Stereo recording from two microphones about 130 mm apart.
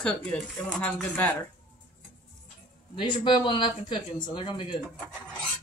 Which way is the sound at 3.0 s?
40° left (ahead or behind).